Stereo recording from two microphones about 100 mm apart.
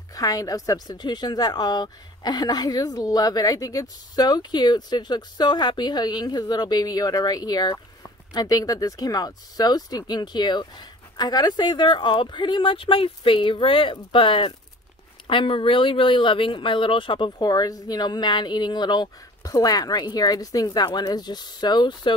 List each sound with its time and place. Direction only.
0.1 s a woman's voice: 40° left (ahead or behind)